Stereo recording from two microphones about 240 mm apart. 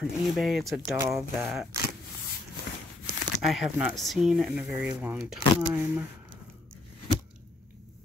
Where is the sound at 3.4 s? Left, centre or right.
Centre.